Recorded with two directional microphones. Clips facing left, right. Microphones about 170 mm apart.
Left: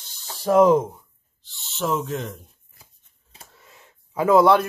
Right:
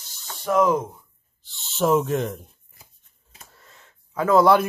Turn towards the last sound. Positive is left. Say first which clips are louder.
# left 1 dB
turn(degrees=15)  # may be behind; listen again after turning